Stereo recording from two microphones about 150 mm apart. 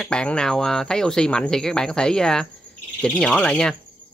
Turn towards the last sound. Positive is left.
turn(degrees=5)  # may be behind; listen again after turning